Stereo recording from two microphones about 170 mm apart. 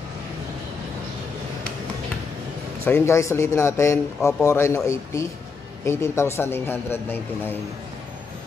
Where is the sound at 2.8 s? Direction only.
15° left (ahead or behind).